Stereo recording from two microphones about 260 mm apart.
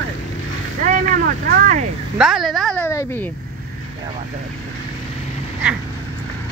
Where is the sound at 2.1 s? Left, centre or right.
Centre.